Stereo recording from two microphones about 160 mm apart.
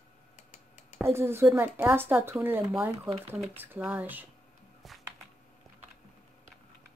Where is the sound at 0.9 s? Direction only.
15° right (ahead or behind).